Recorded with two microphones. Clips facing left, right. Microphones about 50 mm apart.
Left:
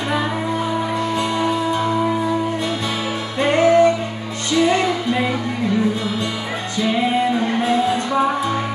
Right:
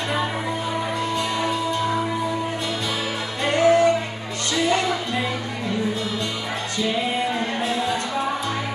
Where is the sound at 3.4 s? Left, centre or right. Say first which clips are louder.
Left 4 dB; left.